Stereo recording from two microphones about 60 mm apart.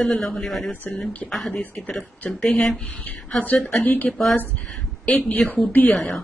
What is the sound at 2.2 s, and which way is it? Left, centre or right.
Speech, centre.